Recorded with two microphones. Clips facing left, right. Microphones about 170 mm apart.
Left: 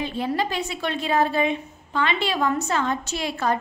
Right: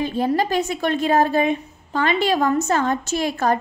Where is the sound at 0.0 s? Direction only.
45° right (ahead or behind).